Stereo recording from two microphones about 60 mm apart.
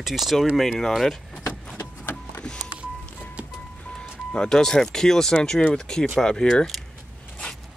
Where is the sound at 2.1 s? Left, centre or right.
Centre.